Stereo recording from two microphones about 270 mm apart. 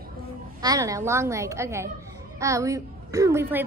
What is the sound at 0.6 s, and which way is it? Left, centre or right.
A woman's voice, centre.